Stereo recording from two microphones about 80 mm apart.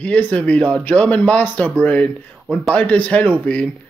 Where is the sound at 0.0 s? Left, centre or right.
Centre.